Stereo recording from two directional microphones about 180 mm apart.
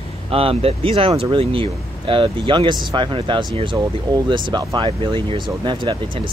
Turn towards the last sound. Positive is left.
turn(degrees=-25)  # may be behind; listen again after turning